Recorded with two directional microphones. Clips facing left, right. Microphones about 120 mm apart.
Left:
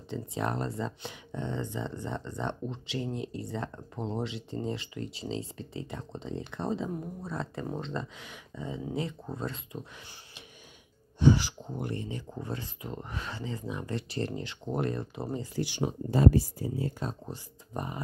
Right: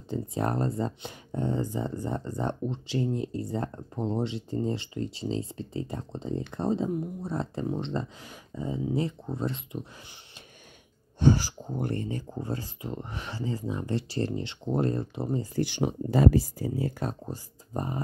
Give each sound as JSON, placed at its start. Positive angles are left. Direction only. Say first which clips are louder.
{"t": 0.1, "sound": "speech", "louder": "right 3 dB", "side_deg": -40}
{"t": 11.1, "sound": "speech", "louder": "even", "side_deg": -45}
{"t": 15.5, "sound": "speech", "louder": "right 3 dB", "side_deg": -55}
{"t": 16.1, "sound": "speech", "louder": "right 1 dB", "side_deg": -90}
{"t": 17.3, "sound": "speech", "louder": "right 3 dB", "side_deg": -35}